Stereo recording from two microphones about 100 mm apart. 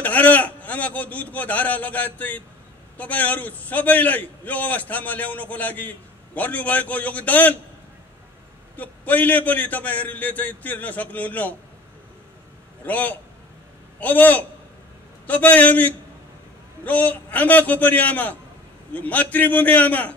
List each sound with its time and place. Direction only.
0.0 s a man's voice: 15° left (ahead or behind)
8.7 s a man's voice: 15° left (ahead or behind)
12.8 s a man's voice: 15° left (ahead or behind)